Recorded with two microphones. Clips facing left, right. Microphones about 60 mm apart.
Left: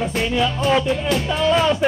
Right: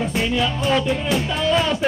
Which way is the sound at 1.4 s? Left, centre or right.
Centre.